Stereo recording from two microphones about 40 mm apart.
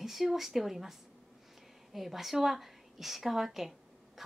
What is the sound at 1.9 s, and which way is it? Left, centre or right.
A woman's voice, centre.